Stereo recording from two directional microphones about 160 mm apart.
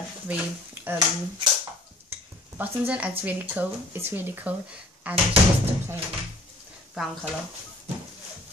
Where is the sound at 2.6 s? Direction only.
10° right (ahead or behind).